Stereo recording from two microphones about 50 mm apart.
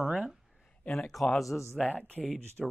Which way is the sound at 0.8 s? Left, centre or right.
Centre.